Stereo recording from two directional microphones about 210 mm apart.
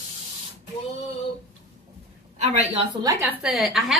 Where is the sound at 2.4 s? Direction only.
30° right (ahead or behind).